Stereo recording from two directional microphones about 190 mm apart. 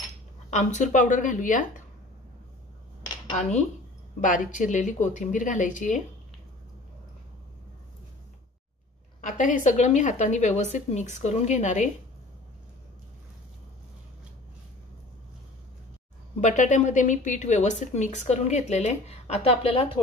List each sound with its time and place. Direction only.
0.5 s a woman's voice: 40° left (ahead or behind)
4.2 s a woman's voice: 45° left (ahead or behind)
9.2 s a woman's voice: 45° left (ahead or behind)
16.3 s a woman's voice: 40° left (ahead or behind)